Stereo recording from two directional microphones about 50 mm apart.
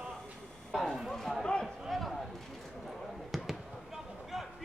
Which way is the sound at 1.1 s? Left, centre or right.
Centre.